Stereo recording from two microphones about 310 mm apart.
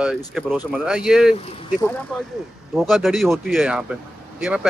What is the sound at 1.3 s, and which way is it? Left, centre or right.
Speech, centre.